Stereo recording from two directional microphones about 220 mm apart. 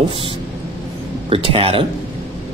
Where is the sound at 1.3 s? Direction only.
25° right (ahead or behind).